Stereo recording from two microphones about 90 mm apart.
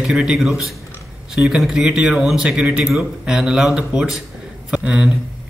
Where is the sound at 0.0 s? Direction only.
10° right (ahead or behind).